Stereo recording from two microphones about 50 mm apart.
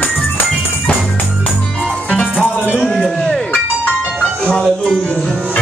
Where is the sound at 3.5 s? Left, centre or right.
Left.